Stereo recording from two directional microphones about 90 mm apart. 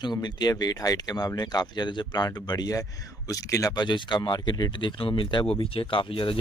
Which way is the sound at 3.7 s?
60° left (ahead or behind).